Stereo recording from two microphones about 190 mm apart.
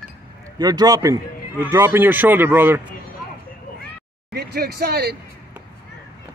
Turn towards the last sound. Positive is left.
turn(degrees=-60)  # may be behind; listen again after turning